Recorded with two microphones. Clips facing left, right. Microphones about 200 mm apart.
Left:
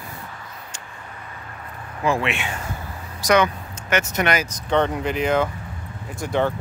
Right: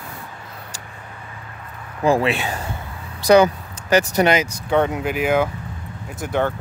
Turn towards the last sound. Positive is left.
turn(degrees=-5)  # may be behind; listen again after turning